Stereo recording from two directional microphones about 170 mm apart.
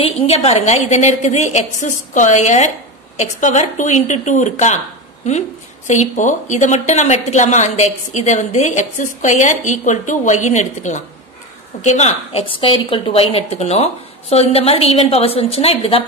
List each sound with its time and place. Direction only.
0.0 s a woman's voice: 35° left (ahead or behind)
5.9 s a woman's voice: 45° left (ahead or behind)